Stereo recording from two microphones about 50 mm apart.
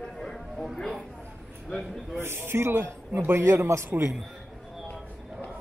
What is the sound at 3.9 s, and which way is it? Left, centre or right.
Speech, right.